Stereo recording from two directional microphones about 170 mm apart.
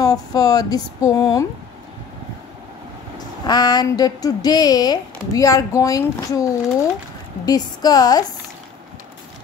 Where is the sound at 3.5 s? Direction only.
25° left (ahead or behind).